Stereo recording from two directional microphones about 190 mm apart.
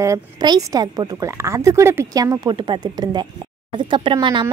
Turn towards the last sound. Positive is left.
turn(degrees=-25)  # may be behind; listen again after turning